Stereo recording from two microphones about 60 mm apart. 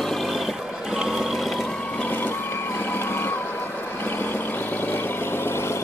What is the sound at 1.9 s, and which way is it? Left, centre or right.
Reversing beeps, left.